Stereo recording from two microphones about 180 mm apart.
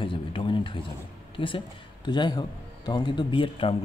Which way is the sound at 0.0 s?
30° left (ahead or behind).